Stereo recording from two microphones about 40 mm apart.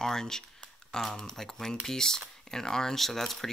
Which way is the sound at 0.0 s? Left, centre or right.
Centre.